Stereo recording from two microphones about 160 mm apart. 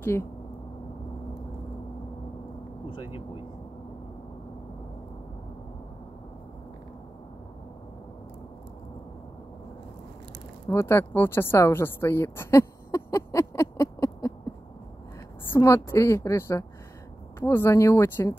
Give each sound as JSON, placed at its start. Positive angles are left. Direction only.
{"t": 0.0, "sound": "speech", "side_deg": 15}
{"t": 10.7, "sound": "speech", "side_deg": 15}
{"t": 15.5, "sound": "a woman's voice", "side_deg": 15}